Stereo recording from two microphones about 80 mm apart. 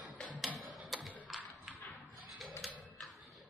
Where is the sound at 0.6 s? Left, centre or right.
Centre.